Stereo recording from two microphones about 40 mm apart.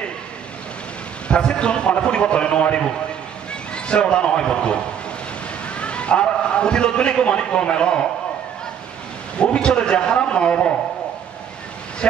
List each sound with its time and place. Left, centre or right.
1.3 s a man's voice: left
5.8 s a man's voice: left
9.4 s a man's voice: left
12.0 s speech: left